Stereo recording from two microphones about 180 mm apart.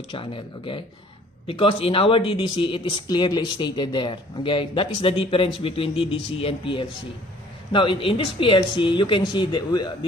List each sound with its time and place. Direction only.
0.1 s speech: 30° left (ahead or behind)